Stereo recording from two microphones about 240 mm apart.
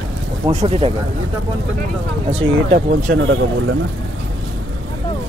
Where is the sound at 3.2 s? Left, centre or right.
Right.